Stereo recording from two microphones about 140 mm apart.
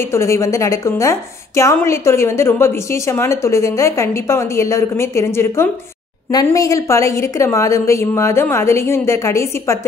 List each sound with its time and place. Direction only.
0.1 s a woman's voice: 20° left (ahead or behind)